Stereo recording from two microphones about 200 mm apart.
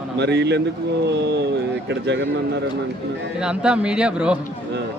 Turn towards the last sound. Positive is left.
turn(degrees=-5)  # may be behind; listen again after turning